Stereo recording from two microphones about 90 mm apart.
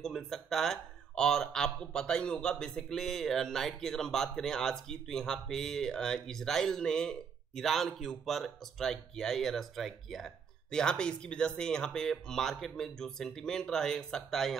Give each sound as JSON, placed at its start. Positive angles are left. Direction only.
{"t": 0.0, "sound": "speech", "side_deg": 5}